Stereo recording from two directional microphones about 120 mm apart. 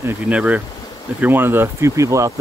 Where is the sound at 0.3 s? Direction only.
10° right (ahead or behind).